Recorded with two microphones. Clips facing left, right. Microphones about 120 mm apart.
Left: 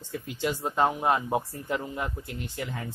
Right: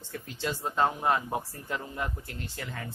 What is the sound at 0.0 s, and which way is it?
Speech, 15° left (ahead or behind).